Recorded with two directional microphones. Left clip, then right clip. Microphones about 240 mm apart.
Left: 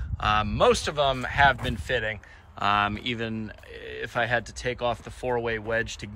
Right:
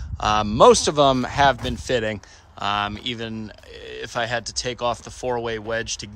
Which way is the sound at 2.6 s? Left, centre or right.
Centre.